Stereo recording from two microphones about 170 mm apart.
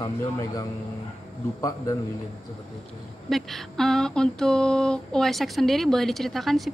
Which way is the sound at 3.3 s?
Centre (ahead or behind).